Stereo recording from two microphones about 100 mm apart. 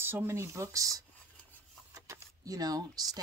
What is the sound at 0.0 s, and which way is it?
Speech, 25° right (ahead or behind).